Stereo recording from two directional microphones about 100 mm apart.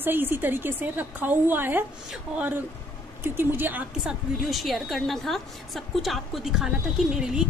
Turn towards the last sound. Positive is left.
turn(degrees=-5)  # may be behind; listen again after turning